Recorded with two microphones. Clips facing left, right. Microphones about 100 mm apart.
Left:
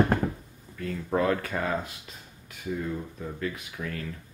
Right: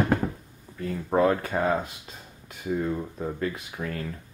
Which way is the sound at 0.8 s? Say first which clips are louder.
Right 4 dB; 25° right (ahead or behind).